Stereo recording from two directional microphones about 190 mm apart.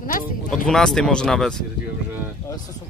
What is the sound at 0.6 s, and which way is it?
Speech, 5° left (ahead or behind).